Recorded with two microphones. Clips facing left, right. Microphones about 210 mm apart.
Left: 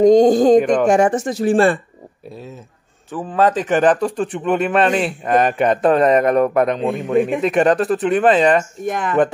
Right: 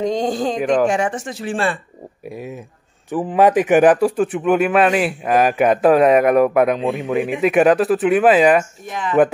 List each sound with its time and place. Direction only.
0.0 s speech: 45° left (ahead or behind)
0.6 s a man's voice: centre (ahead or behind)
0.8 s speech: 45° left (ahead or behind)
2.2 s a man's voice: 15° right (ahead or behind)
8.8 s speech: 50° left (ahead or behind)